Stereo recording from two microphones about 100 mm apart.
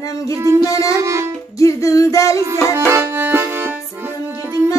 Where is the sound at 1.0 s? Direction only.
30° right (ahead or behind).